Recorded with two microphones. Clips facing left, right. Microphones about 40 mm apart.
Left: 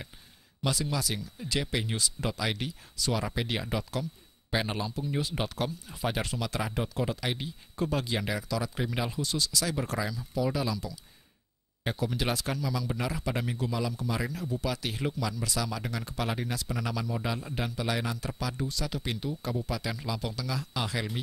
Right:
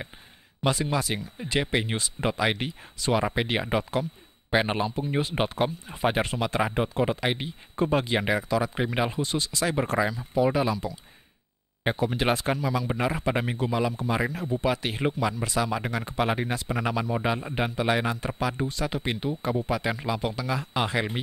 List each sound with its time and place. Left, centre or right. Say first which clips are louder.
0.7 s speech: right 5 dB; right